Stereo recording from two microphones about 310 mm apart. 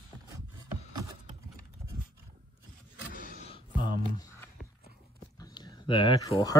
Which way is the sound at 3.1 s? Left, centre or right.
Right.